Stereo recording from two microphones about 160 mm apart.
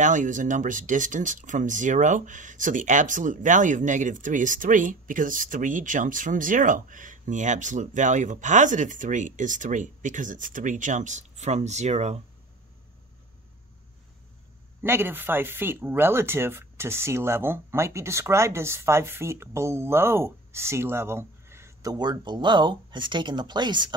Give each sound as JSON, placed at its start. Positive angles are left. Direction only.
{"t": 0.0, "sound": "speech", "side_deg": -50}
{"t": 14.8, "sound": "speech", "side_deg": -15}